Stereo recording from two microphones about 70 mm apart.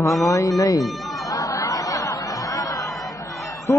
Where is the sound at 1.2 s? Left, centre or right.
Left.